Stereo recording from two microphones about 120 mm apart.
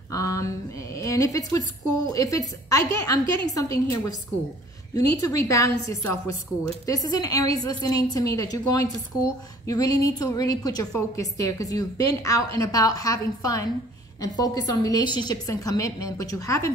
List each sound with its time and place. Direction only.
0.1 s a woman's voice: 30° left (ahead or behind)